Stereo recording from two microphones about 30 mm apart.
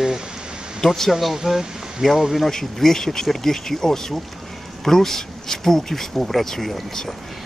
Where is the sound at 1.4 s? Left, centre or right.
Centre.